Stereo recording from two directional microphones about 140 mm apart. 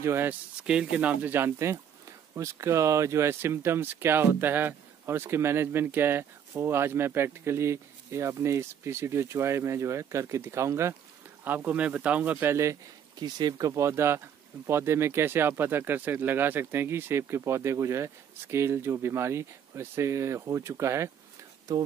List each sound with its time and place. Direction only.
0.0 s speech: 15° right (ahead or behind)
13.2 s speech: 30° right (ahead or behind)